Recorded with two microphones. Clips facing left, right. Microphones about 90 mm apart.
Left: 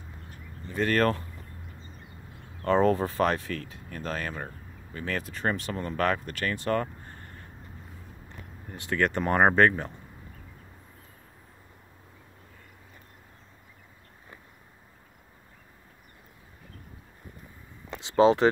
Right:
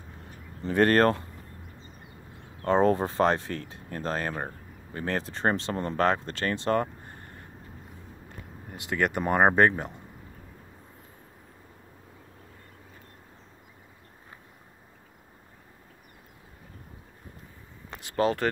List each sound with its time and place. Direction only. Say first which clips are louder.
0.6 s speech: right 7 dB; 90° right
0.8 s speech: right 3 dB; 40° right (ahead or behind)
2.6 s speech: even; 20° right (ahead or behind)
8.7 s speech: left 1 dB; 15° right (ahead or behind)
18.0 s speech: left 6 dB; 20° left (ahead or behind)